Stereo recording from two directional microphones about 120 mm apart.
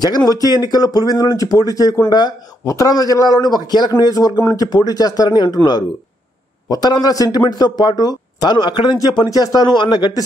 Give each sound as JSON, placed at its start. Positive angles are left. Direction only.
{"t": 0.0, "sound": "speech", "side_deg": 35}
{"t": 4.6, "sound": "speech", "side_deg": 35}
{"t": 6.7, "sound": "speech", "side_deg": 35}